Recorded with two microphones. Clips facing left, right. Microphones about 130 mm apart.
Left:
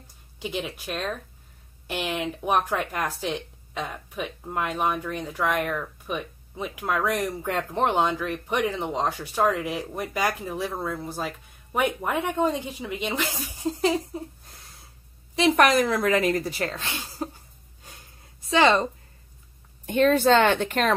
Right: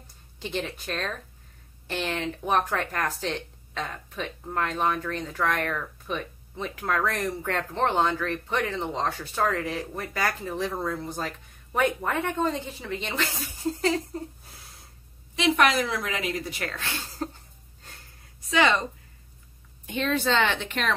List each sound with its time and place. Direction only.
0.4 s speech: 10° left (ahead or behind)
14.4 s a sound: centre (ahead or behind)
15.3 s speech: 40° left (ahead or behind); by 17.4 s 10° left (ahead or behind)
18.5 s speech: 30° left (ahead or behind)
19.9 s speech: 45° left (ahead or behind)